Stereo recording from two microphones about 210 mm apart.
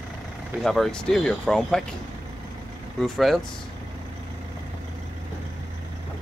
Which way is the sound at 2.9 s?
Centre (ahead or behind).